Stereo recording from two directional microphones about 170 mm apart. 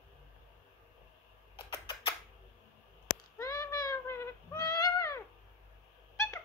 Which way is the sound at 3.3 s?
20° left (ahead or behind).